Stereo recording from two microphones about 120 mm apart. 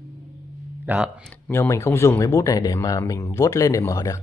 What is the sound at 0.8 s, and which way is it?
Speech, 10° right (ahead or behind).